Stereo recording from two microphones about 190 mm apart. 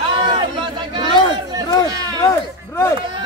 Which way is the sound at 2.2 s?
15° left (ahead or behind).